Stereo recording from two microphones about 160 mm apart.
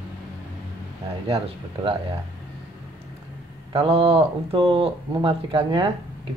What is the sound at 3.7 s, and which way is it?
Speech, 35° right (ahead or behind).